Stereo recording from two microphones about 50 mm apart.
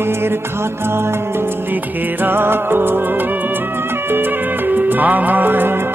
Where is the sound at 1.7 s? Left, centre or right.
Right.